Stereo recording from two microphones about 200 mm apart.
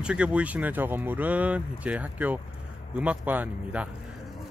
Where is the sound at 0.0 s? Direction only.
5° right (ahead or behind).